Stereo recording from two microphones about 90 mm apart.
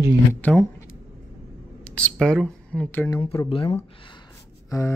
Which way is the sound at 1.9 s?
10° left (ahead or behind).